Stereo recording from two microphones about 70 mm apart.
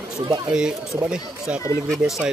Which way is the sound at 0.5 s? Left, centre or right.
Centre.